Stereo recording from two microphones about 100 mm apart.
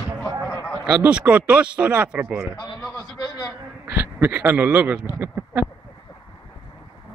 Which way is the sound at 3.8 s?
20° right (ahead or behind).